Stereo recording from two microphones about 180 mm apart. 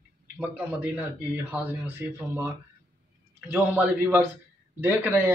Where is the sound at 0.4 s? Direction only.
10° right (ahead or behind).